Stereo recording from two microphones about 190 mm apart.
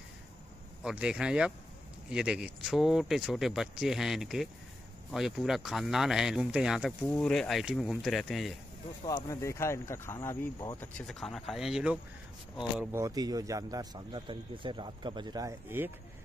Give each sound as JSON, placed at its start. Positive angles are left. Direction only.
{"t": 0.8, "sound": "speech", "side_deg": -5}
{"t": 9.0, "sound": "speech", "side_deg": 15}
{"t": 11.0, "sound": "speech", "side_deg": 0}
{"t": 12.9, "sound": "a man's voice", "side_deg": -20}